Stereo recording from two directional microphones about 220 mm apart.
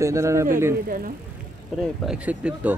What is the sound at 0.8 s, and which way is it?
Speech, 40° right (ahead or behind).